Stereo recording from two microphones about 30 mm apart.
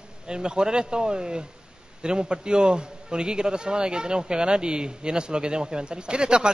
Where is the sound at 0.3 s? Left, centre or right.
Right.